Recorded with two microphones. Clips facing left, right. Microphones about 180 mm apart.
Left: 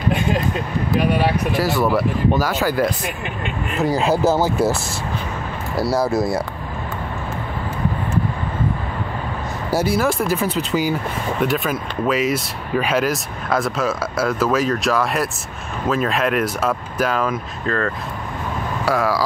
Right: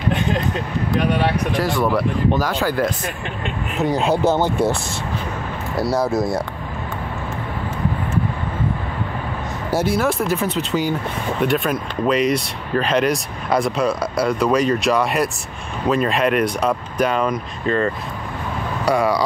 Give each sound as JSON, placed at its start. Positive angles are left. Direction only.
{"t": 0.9, "sound": "speech", "side_deg": 5}
{"t": 5.8, "sound": "speech", "side_deg": 5}
{"t": 9.8, "sound": "speech", "side_deg": 0}